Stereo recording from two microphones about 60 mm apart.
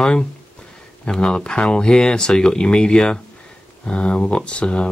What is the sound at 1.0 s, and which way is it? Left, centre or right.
Speech, centre.